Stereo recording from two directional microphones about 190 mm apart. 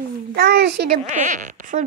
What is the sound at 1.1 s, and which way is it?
Speech, 40° right (ahead or behind).